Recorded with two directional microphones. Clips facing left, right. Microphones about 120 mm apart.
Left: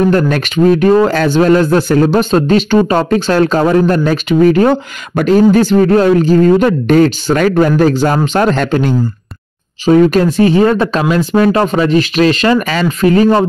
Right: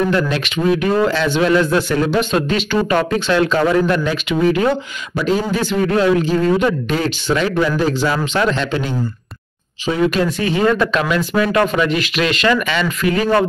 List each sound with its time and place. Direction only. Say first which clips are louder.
0.1 s speech: left 6 dB; 45° left (ahead or behind)
9.8 s speech: left 8 dB; 35° left (ahead or behind)